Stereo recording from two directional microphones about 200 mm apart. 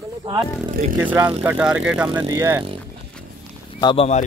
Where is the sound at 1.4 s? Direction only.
5° right (ahead or behind).